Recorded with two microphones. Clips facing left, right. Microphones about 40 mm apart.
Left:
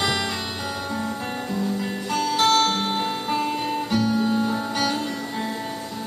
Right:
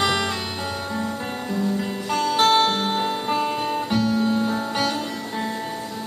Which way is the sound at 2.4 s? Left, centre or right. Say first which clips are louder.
Right 1 dB; centre.